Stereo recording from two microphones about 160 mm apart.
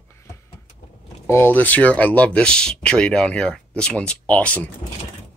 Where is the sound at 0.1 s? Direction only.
15° left (ahead or behind).